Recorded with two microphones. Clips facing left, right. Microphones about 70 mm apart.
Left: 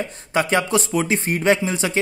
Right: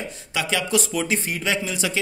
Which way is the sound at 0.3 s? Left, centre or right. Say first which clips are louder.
Left 5 dB; left.